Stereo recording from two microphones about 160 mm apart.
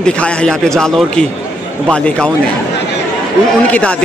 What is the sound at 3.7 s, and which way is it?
Speech, 10° left (ahead or behind).